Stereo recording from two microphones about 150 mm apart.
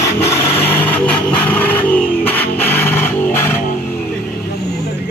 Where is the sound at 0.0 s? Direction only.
15° left (ahead or behind).